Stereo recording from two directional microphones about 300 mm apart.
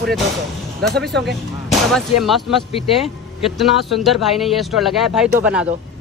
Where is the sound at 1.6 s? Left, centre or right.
Centre.